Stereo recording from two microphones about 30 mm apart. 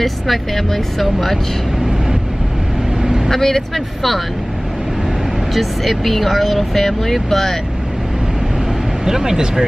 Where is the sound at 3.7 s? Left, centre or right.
Centre.